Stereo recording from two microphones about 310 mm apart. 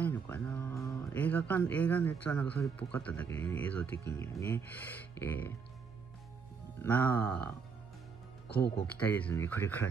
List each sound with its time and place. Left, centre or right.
0.0 s speech: centre
6.8 s speech: centre
8.5 s speech: left
9.0 s speech: centre